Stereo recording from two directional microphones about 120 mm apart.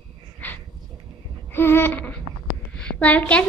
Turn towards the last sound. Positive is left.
turn(degrees=10)  # may be behind; listen again after turning